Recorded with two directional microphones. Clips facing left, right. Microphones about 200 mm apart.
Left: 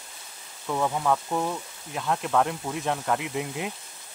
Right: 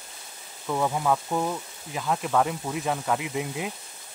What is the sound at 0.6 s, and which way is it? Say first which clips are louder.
Speech: even; 5° right (ahead or behind).